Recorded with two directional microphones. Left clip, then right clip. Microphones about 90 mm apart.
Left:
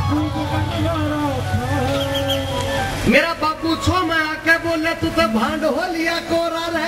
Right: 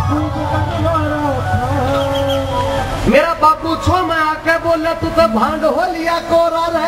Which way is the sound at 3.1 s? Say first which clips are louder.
Right 6 dB; 20° left (ahead or behind).